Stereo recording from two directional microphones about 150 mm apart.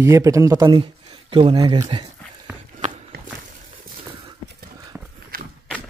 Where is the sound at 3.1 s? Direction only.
90° right.